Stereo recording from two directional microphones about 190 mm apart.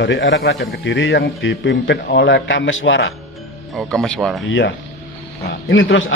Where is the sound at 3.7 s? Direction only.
5° left (ahead or behind).